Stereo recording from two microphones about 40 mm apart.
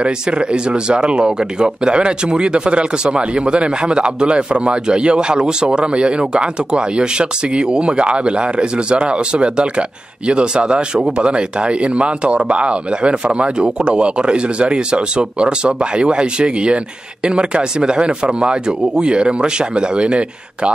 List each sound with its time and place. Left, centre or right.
0.0 s speech: right